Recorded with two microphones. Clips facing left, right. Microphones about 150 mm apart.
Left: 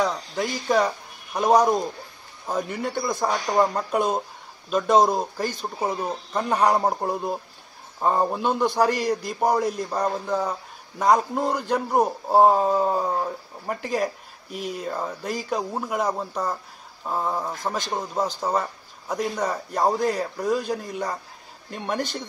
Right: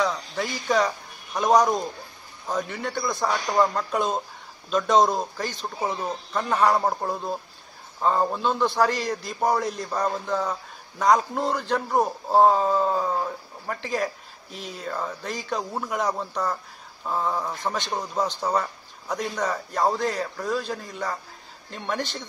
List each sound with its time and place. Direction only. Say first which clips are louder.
0.0 s a man's voice: left 1 dB; 5° left (ahead or behind)
2.9 s a man's voice: even; 15° left (ahead or behind)